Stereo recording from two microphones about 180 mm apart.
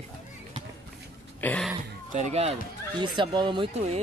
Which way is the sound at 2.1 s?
40° right (ahead or behind).